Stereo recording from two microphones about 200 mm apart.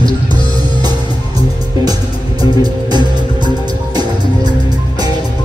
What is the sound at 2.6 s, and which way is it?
Music, 20° right (ahead or behind).